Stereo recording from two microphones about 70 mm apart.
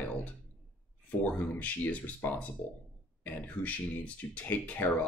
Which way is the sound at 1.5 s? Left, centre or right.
Left.